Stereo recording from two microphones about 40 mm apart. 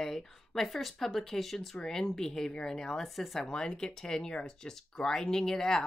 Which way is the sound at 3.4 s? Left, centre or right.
Centre.